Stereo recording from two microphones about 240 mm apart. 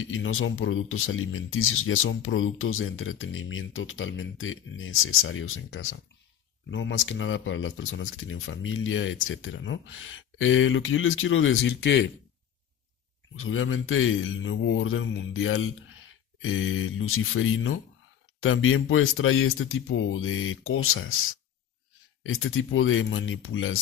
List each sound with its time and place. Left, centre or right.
0.0 s speech: left
13.4 s speech: left
22.2 s speech: left